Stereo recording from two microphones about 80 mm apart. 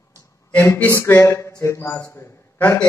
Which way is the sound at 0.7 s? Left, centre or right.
Left.